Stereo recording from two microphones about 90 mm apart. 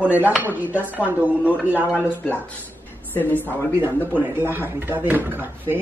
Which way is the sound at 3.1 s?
20° left (ahead or behind).